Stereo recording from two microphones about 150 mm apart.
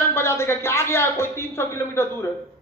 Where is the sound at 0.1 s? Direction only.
15° left (ahead or behind).